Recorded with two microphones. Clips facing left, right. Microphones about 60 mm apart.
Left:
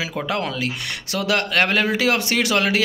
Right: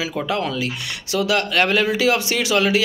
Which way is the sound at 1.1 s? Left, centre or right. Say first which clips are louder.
Right 2 dB; left.